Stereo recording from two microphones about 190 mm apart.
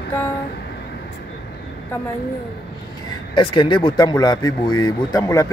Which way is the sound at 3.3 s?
25° left (ahead or behind).